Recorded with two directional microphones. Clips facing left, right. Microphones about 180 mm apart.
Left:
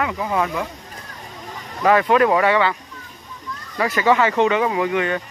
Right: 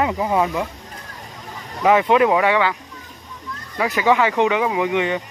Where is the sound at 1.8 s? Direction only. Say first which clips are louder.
Right 1 dB; 10° right (ahead or behind).